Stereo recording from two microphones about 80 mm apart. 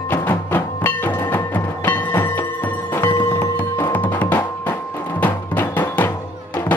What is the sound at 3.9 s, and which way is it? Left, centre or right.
Music, left.